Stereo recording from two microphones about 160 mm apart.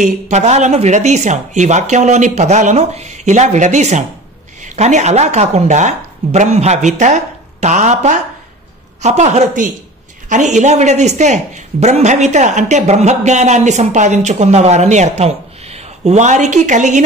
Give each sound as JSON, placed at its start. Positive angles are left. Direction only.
{"t": 0.0, "sound": "a woman's voice", "side_deg": -45}